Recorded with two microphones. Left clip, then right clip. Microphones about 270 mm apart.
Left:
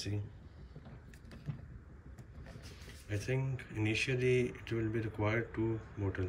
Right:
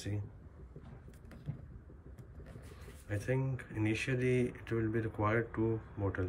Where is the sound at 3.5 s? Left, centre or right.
Right.